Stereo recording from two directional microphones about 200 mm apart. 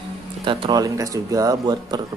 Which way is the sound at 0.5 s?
20° right (ahead or behind).